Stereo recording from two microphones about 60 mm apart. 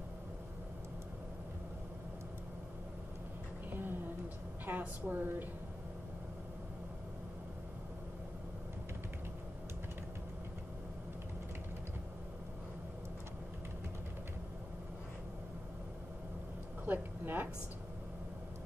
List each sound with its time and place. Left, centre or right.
4.6 s a woman's voice: right
16.8 s a woman's voice: right